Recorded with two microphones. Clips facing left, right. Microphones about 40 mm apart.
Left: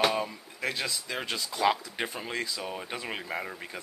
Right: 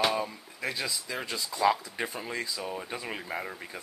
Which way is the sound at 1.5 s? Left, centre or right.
Centre.